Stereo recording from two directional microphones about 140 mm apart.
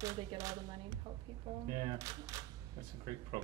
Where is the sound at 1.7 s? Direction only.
40° right (ahead or behind).